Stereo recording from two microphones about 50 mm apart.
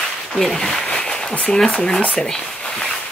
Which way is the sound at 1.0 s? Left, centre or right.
Centre.